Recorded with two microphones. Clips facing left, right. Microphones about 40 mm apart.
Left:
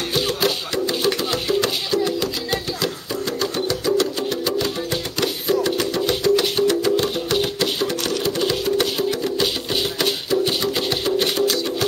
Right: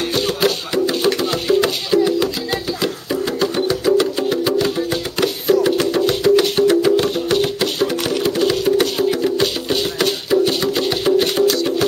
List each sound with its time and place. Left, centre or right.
0.1 s music: centre
7.9 s music: centre
11.1 s music: centre